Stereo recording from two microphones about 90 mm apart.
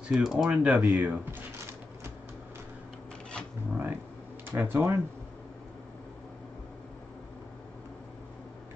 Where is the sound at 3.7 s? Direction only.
25° right (ahead or behind).